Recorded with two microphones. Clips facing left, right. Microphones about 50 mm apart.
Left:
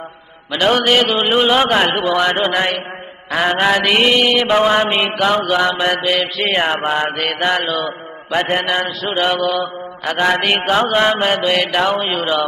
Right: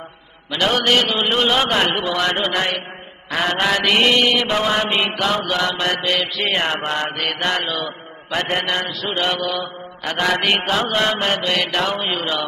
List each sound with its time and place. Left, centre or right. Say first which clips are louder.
0.6 s a man's voice: left 3 dB; centre
4.5 s a man's voice: left 5 dB; centre
9.4 s mantra: left 5 dB; centre
10.2 s a man's voice: left 3 dB; centre
10.6 s a sound: left 5 dB; left
10.9 s a man's voice: left 4 dB; centre